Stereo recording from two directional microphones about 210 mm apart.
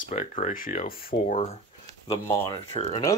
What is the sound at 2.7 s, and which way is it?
Speech, 20° left (ahead or behind).